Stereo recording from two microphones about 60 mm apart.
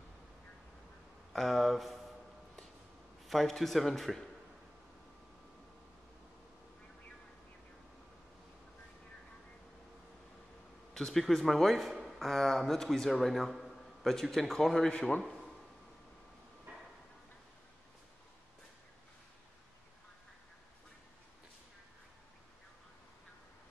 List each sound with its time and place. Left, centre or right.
1.3 s speech: centre
3.3 s a man's voice: centre
10.9 s a man's voice: centre
14.9 s a man's voice: centre